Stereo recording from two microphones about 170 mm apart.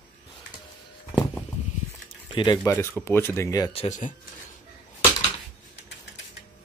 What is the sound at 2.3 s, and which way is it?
Speech, 30° left (ahead or behind).